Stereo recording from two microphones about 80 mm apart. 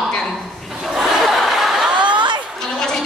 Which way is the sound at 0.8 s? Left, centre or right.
Centre.